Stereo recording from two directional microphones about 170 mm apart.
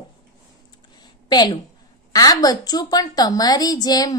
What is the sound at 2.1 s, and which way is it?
A woman's voice, 20° left (ahead or behind).